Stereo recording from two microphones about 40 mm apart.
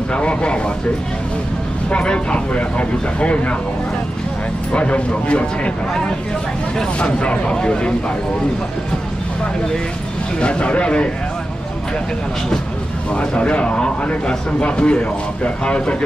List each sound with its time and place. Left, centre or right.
0.1 s a man's voice: left
1.9 s a man's voice: left
4.7 s a man's voice: left
10.4 s a man's voice: left
13.1 s a man's voice: left